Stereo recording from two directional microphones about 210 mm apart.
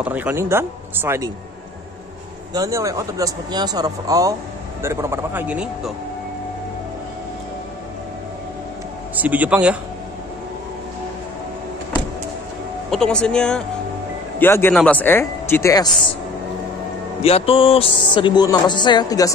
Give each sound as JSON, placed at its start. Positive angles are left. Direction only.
{"t": 0.0, "sound": "speech", "side_deg": -10}
{"t": 2.5, "sound": "speech", "side_deg": -15}
{"t": 9.1, "sound": "speech", "side_deg": -10}
{"t": 12.9, "sound": "speech", "side_deg": 5}
{"t": 17.2, "sound": "speech", "side_deg": 25}